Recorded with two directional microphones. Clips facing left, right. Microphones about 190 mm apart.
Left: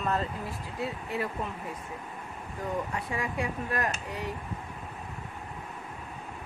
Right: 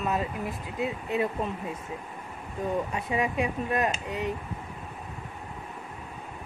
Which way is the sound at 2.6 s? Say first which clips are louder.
Right 4 dB; 20° right (ahead or behind).